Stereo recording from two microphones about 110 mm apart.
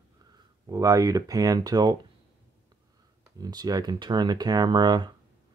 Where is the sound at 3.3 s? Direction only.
35° right (ahead or behind).